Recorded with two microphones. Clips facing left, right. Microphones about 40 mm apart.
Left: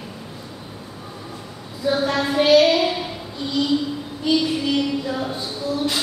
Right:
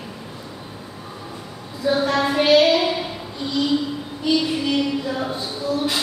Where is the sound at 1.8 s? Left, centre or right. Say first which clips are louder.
Right 1 dB; centre.